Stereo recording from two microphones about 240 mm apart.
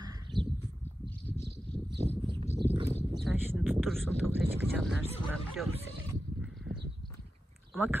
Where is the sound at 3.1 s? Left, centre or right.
Centre.